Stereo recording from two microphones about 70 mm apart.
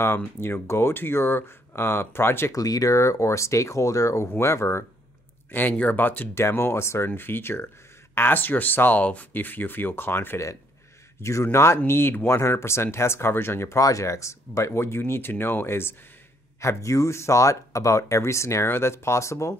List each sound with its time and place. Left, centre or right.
0.4 s speech: left
2.5 s speech: left
5.5 s speech: left
13.7 s speech: left
16.6 s speech: left